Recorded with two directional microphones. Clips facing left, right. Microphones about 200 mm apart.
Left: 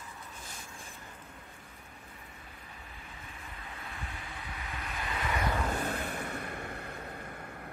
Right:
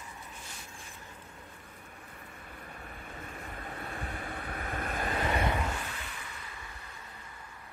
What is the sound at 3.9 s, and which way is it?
Waves, 55° right (ahead or behind).